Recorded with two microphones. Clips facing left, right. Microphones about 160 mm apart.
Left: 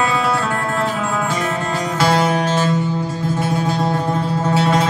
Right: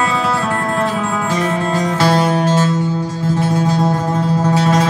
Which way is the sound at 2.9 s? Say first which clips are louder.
Right 1 dB; 20° left (ahead or behind).